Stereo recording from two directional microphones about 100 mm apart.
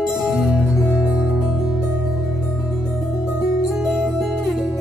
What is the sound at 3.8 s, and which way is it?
Music, 5° right (ahead or behind).